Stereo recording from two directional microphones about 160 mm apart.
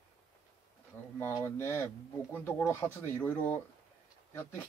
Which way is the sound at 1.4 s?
15° left (ahead or behind).